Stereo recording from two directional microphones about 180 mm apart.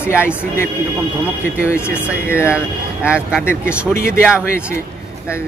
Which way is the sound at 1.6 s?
15° left (ahead or behind).